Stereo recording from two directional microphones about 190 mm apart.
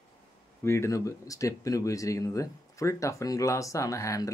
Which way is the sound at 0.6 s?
15° left (ahead or behind).